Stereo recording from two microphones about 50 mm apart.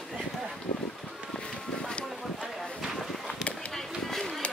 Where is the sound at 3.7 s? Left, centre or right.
Centre.